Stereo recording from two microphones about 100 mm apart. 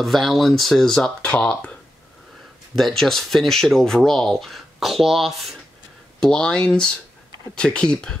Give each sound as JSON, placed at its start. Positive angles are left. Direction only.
{"t": 0.0, "sound": "speech", "side_deg": 0}
{"t": 3.0, "sound": "speech", "side_deg": 5}